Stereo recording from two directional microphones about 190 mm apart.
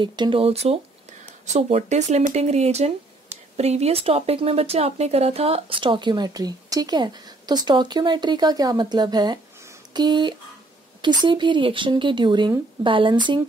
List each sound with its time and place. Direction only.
0.0 s speech: 25° right (ahead or behind)